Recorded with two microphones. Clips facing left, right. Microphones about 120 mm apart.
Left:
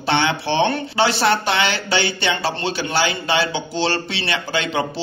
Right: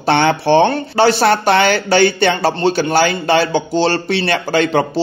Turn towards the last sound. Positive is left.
turn(degrees=-45)  # may be behind; listen again after turning